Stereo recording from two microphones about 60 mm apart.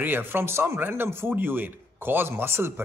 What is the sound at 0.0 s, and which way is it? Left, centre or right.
Speech, right.